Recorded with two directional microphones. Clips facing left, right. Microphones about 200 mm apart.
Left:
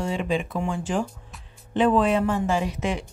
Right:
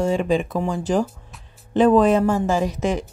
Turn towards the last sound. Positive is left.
turn(degrees=-40)  # may be behind; listen again after turning